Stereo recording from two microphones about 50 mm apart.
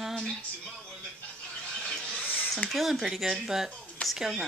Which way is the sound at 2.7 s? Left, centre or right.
Centre.